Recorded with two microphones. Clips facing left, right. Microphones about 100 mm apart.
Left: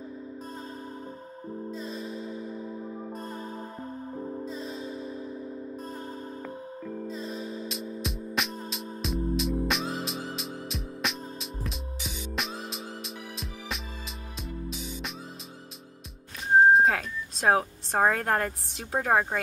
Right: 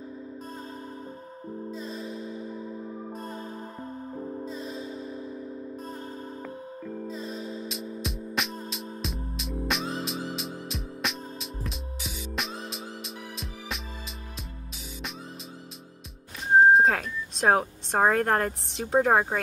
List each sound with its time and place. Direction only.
1.8 s music: 15° right (ahead or behind)
6.4 s music: centre (ahead or behind)
16.7 s speech: centre (ahead or behind)